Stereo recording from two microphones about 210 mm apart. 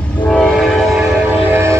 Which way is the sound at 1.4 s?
10° right (ahead or behind).